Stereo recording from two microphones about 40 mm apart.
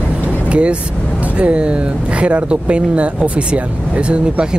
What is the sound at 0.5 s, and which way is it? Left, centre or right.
Speech, right.